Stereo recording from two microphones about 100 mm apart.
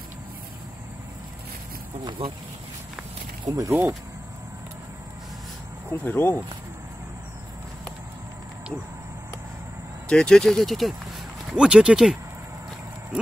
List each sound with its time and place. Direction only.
2.0 s speech: 60° right (ahead or behind)
3.4 s speech: 35° right (ahead or behind)
5.9 s speech: 15° left (ahead or behind)
10.0 s speech: 10° left (ahead or behind); by 12.2 s 10° right (ahead or behind)